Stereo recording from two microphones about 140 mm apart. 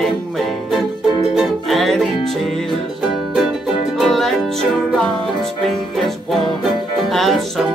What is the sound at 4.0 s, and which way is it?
Music, centre (ahead or behind).